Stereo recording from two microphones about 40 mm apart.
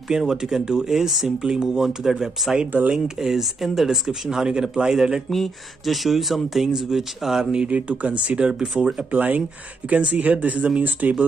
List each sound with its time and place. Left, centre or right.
0.3 s speech: centre
5.3 s speech: centre
7.5 s speech: right
8.4 s speech: right
9.1 s speech: right
9.8 s speech: right